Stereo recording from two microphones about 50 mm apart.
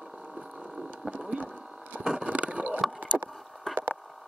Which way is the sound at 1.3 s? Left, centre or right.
Right.